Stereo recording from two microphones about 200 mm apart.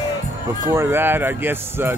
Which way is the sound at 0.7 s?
10° right (ahead or behind).